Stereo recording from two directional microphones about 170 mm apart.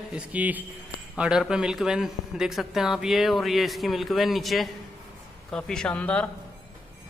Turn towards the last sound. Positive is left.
turn(degrees=5)  # may be behind; listen again after turning